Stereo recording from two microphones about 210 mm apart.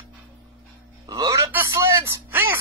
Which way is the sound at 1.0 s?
20° right (ahead or behind).